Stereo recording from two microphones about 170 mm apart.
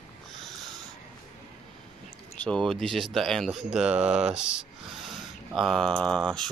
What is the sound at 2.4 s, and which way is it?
Speech, 5° left (ahead or behind).